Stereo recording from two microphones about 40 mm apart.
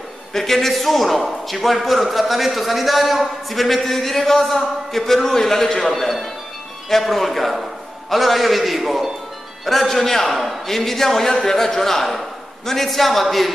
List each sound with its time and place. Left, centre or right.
0.3 s a man's voice: centre